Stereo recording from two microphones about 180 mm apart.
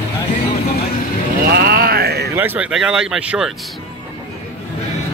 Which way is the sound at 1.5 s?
60° right (ahead or behind).